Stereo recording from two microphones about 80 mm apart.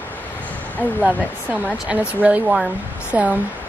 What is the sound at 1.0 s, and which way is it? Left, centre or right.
Speech, centre.